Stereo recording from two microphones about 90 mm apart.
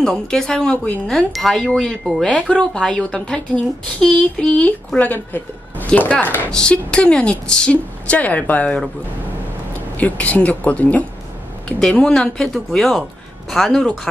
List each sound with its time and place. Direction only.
0.0 s speech: 5° left (ahead or behind)
1.0 s chime: 5° left (ahead or behind)
2.3 s speech: 10° left (ahead or behind)
6.5 s speech: 10° left (ahead or behind)
9.9 s speech: 15° left (ahead or behind)
12.5 s chime: 5° left (ahead or behind)